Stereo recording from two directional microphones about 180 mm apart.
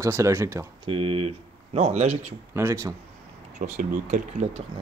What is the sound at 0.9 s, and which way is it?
Speech, 30° right (ahead or behind).